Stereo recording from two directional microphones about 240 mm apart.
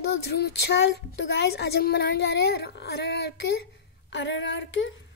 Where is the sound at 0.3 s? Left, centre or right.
Left.